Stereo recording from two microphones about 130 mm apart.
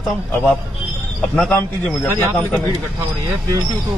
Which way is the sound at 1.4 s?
5° left (ahead or behind).